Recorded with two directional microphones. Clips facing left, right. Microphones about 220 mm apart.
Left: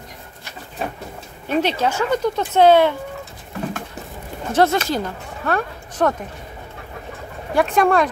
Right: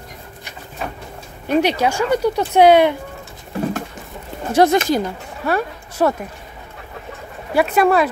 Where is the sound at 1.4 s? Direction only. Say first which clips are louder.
Right 3 dB; 15° right (ahead or behind).